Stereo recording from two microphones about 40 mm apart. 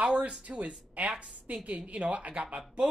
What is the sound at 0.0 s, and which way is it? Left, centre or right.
Speech, right.